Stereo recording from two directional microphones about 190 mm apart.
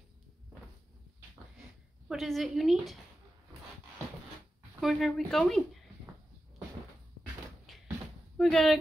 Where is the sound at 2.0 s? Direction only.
Centre (ahead or behind).